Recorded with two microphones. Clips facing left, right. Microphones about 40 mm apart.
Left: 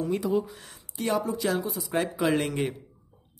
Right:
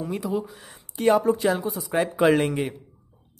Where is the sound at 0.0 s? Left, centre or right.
Centre.